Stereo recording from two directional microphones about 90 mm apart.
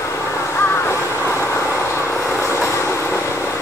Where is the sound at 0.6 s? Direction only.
25° left (ahead or behind).